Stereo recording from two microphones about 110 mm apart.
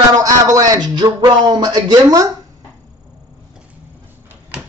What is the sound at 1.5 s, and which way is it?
Speech, 45° right (ahead or behind).